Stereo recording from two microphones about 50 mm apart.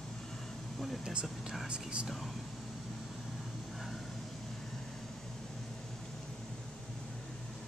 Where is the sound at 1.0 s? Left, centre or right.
Centre.